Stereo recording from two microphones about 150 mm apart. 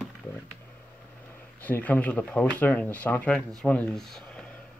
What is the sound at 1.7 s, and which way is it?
Speech, 10° left (ahead or behind).